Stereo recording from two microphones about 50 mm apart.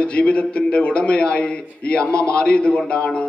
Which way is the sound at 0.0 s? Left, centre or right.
Left.